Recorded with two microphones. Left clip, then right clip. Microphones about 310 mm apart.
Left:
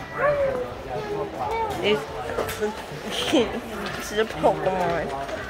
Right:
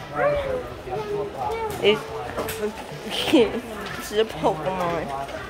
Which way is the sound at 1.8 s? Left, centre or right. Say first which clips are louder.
Right 4 dB; centre.